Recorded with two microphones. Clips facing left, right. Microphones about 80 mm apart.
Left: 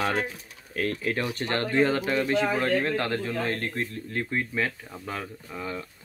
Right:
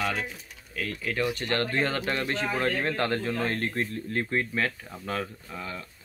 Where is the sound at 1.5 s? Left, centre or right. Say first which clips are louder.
Left 7 dB; centre.